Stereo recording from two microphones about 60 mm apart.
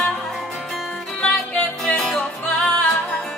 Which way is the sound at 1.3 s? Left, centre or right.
Left.